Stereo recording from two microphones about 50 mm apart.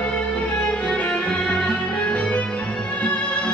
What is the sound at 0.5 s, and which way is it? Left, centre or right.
Music, left.